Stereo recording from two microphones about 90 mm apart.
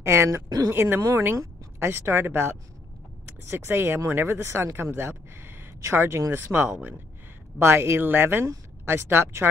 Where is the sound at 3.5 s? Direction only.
25° right (ahead or behind).